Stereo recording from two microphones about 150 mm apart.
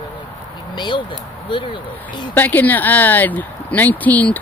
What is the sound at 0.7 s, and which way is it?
Speech, 30° left (ahead or behind).